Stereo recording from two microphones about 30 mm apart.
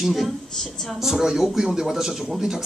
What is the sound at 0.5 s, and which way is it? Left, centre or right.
Speech, centre.